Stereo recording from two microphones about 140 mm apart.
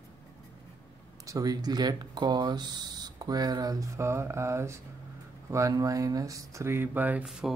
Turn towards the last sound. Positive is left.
turn(degrees=-5)  # may be behind; listen again after turning